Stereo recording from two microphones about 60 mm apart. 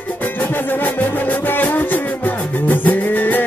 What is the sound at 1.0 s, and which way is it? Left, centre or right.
Music, left.